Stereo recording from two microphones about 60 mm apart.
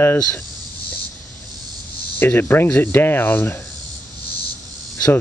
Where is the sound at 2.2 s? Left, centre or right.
Left.